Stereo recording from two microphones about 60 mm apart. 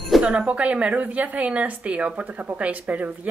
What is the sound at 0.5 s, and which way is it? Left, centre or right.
Speech, right.